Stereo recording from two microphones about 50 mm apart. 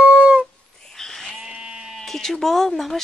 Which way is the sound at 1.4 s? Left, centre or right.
Centre.